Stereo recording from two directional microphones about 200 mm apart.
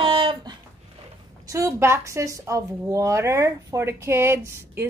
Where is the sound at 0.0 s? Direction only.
25° right (ahead or behind).